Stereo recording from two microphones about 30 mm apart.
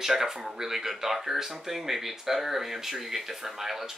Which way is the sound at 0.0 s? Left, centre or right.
Centre.